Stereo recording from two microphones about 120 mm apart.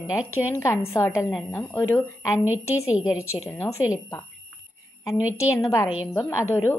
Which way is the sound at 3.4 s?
20° left (ahead or behind).